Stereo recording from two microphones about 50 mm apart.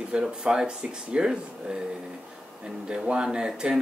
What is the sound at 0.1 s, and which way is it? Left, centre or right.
Speech, centre.